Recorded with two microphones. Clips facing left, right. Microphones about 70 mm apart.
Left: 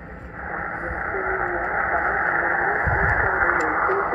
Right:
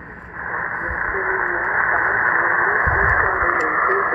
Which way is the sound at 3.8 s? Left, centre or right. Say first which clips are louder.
Right 3 dB; right.